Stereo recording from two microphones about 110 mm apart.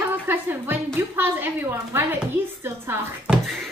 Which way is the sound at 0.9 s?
20° right (ahead or behind).